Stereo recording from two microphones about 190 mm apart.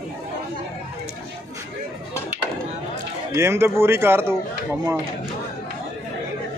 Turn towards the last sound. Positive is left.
turn(degrees=-10)  # may be behind; listen again after turning